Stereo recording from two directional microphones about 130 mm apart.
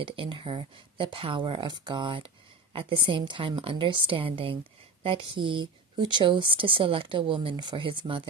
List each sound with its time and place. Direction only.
0.0 s speech: 40° right (ahead or behind)